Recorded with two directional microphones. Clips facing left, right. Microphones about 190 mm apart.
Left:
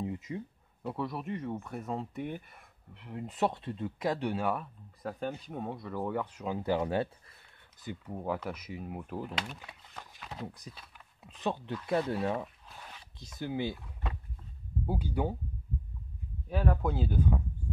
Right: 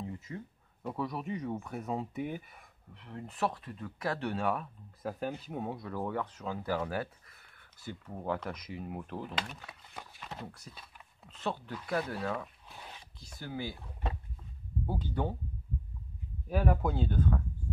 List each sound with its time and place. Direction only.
0.0 s a sound: 15° left (ahead or behind)
0.8 s speech: centre (ahead or behind); by 7.1 s 25° left (ahead or behind)
7.8 s speech: 15° left (ahead or behind)
9.9 s a sound: centre (ahead or behind)
10.4 s speech: 15° left (ahead or behind)
14.9 s speech: 10° left (ahead or behind)
16.4 s speech: 10° right (ahead or behind)
16.9 s speech: 5° left (ahead or behind)